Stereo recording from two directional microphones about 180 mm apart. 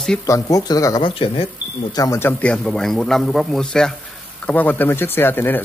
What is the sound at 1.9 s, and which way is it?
A man's voice, 15° left (ahead or behind).